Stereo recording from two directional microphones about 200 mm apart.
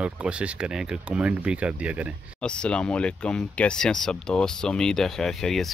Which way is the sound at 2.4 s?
5° left (ahead or behind).